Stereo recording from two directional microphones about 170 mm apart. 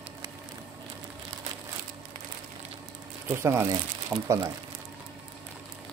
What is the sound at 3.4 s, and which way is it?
Speech, 15° right (ahead or behind).